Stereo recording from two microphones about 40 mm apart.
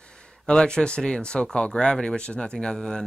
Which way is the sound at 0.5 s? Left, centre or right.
Left.